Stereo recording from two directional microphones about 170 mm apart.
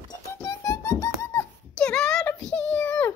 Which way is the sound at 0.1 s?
20° left (ahead or behind).